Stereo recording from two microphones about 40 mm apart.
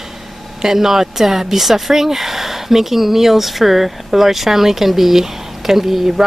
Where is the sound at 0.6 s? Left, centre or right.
Centre.